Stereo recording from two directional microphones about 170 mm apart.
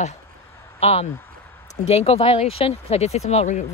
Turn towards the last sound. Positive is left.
turn(degrees=40)  # may be behind; listen again after turning